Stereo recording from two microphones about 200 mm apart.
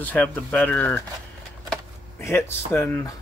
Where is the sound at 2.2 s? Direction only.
10° left (ahead or behind).